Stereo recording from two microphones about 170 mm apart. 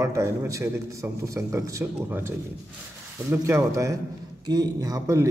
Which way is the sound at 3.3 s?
15° right (ahead or behind).